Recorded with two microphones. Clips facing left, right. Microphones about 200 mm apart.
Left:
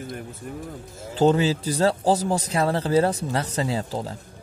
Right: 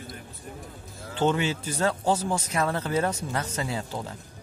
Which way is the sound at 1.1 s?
35° left (ahead or behind).